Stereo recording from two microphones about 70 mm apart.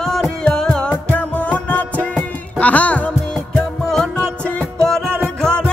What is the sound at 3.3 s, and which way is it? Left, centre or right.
Music, centre.